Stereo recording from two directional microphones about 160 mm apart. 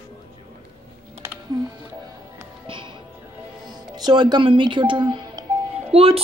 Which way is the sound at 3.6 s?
25° right (ahead or behind).